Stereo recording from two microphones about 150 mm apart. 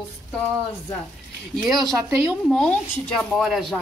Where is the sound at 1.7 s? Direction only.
20° right (ahead or behind).